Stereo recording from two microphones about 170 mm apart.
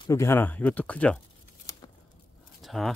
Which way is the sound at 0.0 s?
15° left (ahead or behind).